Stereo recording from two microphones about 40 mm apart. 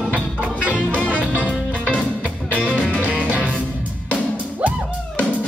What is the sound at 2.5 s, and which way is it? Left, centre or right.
Music, left.